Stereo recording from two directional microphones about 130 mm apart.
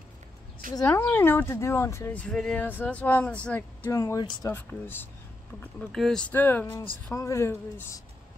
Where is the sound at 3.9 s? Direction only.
25° left (ahead or behind).